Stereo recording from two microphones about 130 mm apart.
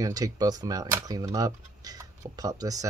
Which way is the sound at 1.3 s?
30° right (ahead or behind).